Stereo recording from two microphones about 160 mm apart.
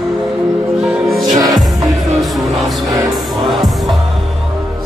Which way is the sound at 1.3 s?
20° right (ahead or behind).